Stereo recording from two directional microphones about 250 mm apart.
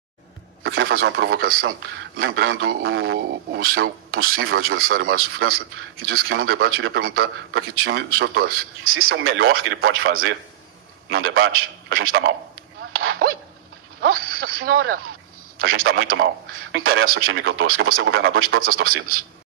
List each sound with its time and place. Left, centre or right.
0.7 s speech: right
2.1 s a man's voice: right
4.4 s a man's voice: right
8.8 s a man's voice: right
12.9 s dog: right
14.1 s a sound: right
15.6 s a man's voice: right
18.6 s speech: right